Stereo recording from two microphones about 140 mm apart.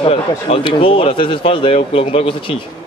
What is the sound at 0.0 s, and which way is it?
Speech, 40° left (ahead or behind).